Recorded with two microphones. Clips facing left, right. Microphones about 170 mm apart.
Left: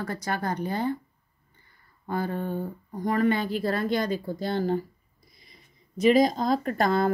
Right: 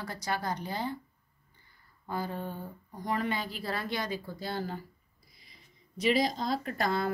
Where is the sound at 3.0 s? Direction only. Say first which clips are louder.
Left 8 dB; 50° left (ahead or behind).